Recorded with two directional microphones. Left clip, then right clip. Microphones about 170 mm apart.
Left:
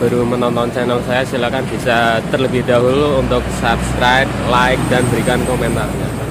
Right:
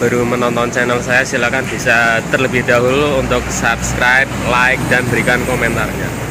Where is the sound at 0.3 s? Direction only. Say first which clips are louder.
Right 1 dB; 10° left (ahead or behind).